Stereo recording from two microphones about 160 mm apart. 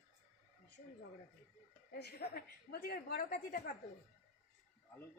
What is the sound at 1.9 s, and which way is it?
A woman's voice, 90° left.